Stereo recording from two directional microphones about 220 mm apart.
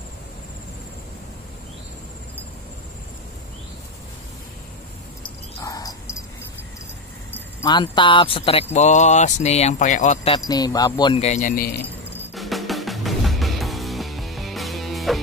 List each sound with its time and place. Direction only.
5.6 s dog: 15° left (ahead or behind)
7.6 s speech: 20° left (ahead or behind)
10.5 s speech: 15° left (ahead or behind); by 11.8 s 40° left (ahead or behind)
12.4 s music: centre (ahead or behind)